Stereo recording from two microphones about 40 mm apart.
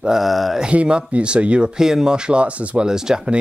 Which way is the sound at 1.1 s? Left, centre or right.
Right.